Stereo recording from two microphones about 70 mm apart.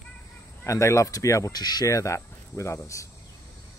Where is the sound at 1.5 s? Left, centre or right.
Left.